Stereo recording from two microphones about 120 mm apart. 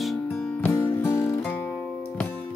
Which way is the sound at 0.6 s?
20° left (ahead or behind).